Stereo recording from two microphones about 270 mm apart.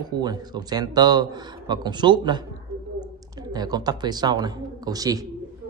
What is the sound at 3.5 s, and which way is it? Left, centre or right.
Speech, centre.